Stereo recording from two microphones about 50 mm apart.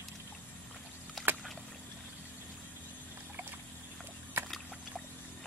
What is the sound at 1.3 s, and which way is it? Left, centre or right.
Rowboat, right.